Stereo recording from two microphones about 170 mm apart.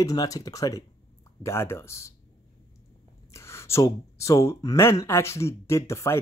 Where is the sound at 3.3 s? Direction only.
15° left (ahead or behind).